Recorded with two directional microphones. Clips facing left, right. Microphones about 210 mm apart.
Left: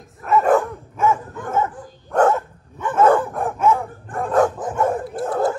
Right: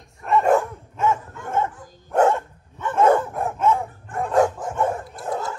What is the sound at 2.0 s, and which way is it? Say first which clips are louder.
Dog: left 1 dB; 10° right (ahead or behind).